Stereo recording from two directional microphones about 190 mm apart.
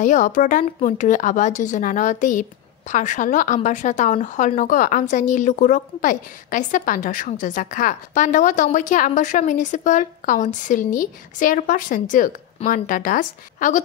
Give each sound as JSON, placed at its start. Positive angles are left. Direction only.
{"t": 0.0, "sound": "a woman's voice", "side_deg": 40}